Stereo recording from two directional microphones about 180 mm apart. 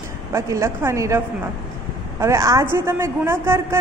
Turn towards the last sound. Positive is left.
turn(degrees=-15)  # may be behind; listen again after turning